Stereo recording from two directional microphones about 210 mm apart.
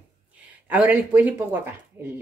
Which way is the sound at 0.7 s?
10° right (ahead or behind).